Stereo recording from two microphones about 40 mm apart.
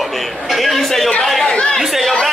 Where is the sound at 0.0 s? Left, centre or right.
Centre.